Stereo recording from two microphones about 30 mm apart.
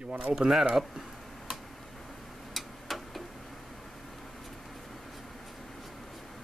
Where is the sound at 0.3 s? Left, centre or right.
Centre.